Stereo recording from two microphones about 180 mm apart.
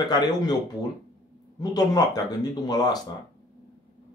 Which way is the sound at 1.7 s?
20° left (ahead or behind).